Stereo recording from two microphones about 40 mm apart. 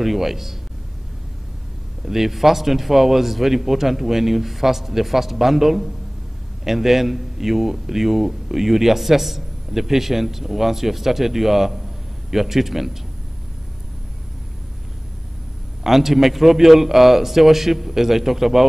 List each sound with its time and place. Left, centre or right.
0.0 s a man's voice: centre
2.0 s a man's voice: centre
15.8 s a man's voice: centre